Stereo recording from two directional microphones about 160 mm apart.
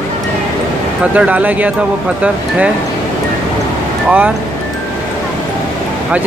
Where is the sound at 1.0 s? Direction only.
10° right (ahead or behind).